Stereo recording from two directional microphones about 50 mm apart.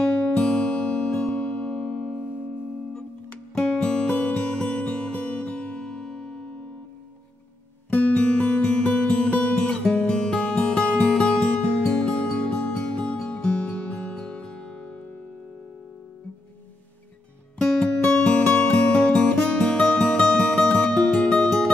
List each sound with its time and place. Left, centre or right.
0.0 s music: centre
3.5 s music: centre
4.1 s music: left
4.4 s music: centre
7.9 s music: left
17.6 s music: centre